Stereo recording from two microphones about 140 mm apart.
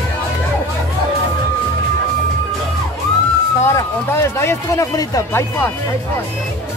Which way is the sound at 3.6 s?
20° left (ahead or behind).